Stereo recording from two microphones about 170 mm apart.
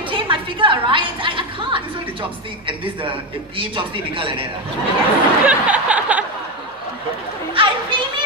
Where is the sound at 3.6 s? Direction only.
30° right (ahead or behind).